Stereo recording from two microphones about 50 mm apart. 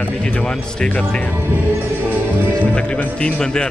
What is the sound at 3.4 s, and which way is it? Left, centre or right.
Speech, centre.